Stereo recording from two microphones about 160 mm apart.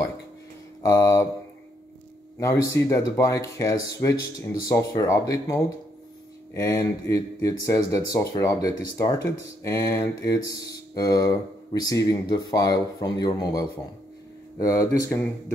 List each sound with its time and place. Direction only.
0.8 s speech: 20° left (ahead or behind)
2.4 s speech: 20° left (ahead or behind)